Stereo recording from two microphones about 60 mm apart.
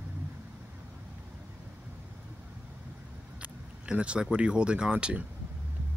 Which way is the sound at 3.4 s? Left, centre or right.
Centre.